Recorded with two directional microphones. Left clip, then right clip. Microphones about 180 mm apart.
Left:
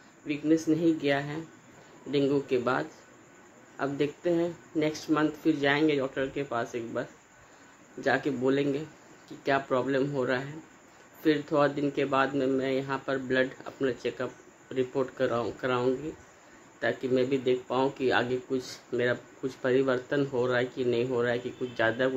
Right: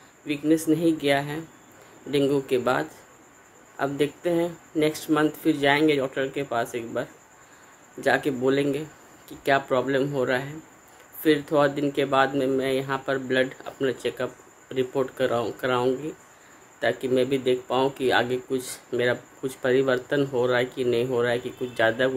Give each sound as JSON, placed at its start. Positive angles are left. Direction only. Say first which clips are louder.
{"t": 0.3, "sound": "speech", "louder": "right 4 dB", "side_deg": -15}